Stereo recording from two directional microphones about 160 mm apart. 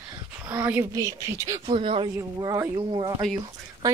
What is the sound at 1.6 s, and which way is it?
Speech, 35° right (ahead or behind).